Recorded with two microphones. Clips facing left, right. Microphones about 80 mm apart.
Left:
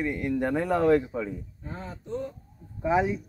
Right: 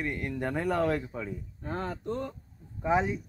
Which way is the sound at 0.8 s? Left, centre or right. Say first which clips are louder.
Left 9 dB; centre.